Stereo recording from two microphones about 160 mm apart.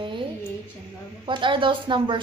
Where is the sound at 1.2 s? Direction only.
30° right (ahead or behind).